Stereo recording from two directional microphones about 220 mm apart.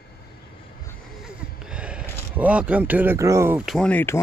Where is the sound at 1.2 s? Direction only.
5° right (ahead or behind).